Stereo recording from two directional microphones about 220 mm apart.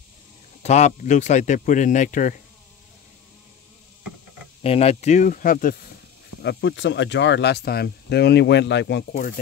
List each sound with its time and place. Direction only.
0.6 s speech: 30° left (ahead or behind)
4.6 s speech: 30° left (ahead or behind)
6.4 s speech: 55° left (ahead or behind)